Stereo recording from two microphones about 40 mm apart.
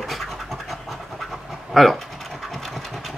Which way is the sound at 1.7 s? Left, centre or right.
Centre.